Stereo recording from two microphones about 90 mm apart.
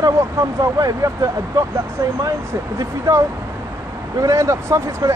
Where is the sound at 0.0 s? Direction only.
35° right (ahead or behind).